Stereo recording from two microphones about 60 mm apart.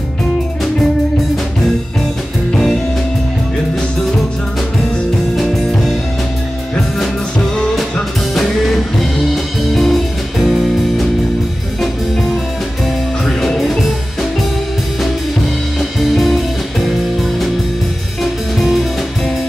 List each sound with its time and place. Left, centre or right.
5.3 s music: centre
8.4 s music: centre
12.8 s music: centre
16.0 s music: centre